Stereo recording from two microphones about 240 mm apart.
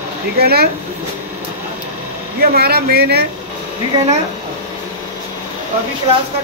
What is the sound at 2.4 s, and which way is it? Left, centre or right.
Speech, right.